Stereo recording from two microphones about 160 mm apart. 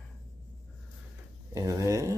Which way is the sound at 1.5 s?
20° right (ahead or behind).